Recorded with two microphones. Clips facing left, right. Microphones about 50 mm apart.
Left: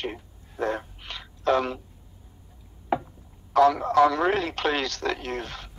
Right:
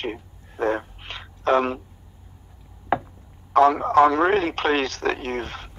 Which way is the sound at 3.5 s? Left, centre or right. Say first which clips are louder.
Right 3 dB; right.